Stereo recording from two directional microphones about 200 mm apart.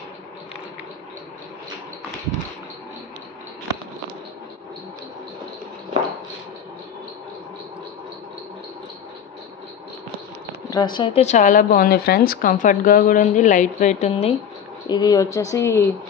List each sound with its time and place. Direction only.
10.7 s speech: 20° left (ahead or behind)
14.9 s a woman's voice: 20° left (ahead or behind)